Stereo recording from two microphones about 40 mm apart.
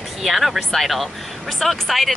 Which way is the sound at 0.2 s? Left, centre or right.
Centre.